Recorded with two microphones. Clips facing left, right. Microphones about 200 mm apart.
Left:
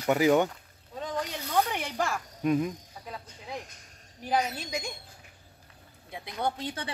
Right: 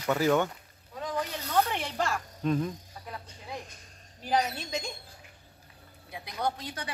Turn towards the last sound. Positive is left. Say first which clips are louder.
# left 1 dB
turn(degrees=25)  # may be behind; listen again after turning